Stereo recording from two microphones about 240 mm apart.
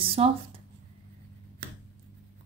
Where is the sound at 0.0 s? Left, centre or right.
Right.